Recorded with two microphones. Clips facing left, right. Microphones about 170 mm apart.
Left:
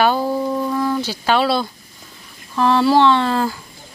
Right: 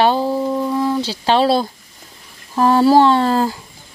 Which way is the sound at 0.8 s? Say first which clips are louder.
Right 2 dB; 25° right (ahead or behind).